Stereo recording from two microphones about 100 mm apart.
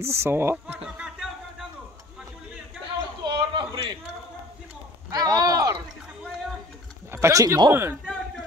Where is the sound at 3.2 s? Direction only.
50° right (ahead or behind).